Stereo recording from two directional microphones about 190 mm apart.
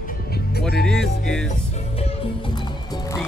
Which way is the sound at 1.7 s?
30° left (ahead or behind).